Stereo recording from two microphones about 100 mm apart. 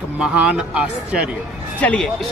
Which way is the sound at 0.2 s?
10° right (ahead or behind).